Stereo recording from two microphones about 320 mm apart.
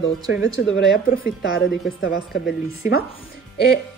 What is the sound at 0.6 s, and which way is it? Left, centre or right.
A woman's voice, left.